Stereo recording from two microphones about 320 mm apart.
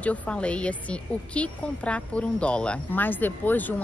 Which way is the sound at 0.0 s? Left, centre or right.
Centre.